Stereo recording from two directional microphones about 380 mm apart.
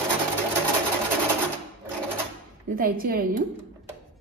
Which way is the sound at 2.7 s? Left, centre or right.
Right.